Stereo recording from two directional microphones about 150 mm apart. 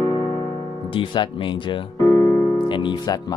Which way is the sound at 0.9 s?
30° left (ahead or behind).